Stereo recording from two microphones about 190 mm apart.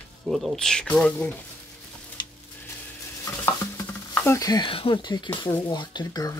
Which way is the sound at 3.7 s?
10° left (ahead or behind).